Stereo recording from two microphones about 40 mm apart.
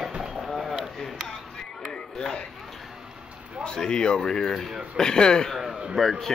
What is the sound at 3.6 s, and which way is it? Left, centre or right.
A man's voice, centre.